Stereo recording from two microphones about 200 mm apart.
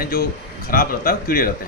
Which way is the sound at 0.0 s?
45° left (ahead or behind).